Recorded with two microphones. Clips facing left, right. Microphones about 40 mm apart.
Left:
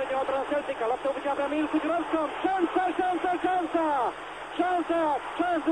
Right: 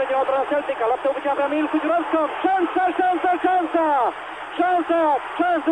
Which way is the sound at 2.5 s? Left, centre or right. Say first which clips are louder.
Right 5 dB; centre.